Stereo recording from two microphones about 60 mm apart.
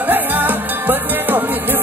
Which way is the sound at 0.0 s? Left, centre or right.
Right.